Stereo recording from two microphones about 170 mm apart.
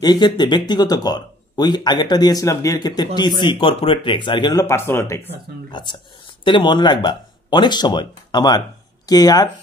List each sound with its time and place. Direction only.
0.0 s speech: 25° left (ahead or behind)
5.7 s speech: 25° left (ahead or behind)